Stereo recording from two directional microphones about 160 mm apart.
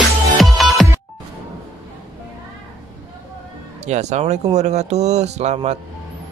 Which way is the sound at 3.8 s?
45° right (ahead or behind).